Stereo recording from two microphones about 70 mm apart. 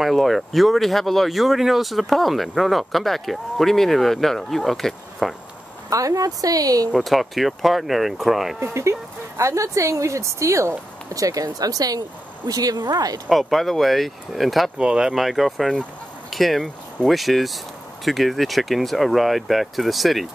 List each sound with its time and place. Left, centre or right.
0.0 s speech: centre
5.9 s speech: right
7.0 s speech: centre
8.5 s a woman's voice: right
11.1 s speech: right
13.3 s speech: centre
14.8 s speech: centre